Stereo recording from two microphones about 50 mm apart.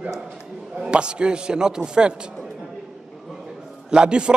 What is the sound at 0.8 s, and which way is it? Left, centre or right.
A man's voice, centre.